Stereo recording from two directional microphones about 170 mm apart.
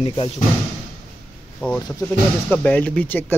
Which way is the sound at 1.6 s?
10° left (ahead or behind).